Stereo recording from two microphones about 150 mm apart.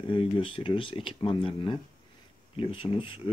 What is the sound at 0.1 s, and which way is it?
Speech, 35° left (ahead or behind).